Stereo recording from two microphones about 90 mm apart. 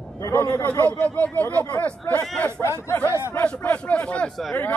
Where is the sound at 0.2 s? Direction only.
35° left (ahead or behind).